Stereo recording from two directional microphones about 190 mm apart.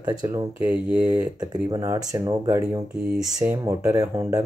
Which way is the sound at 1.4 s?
20° right (ahead or behind).